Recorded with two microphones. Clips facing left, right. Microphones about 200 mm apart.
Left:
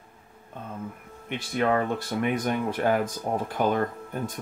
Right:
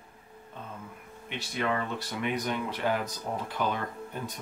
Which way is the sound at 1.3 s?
50° left (ahead or behind).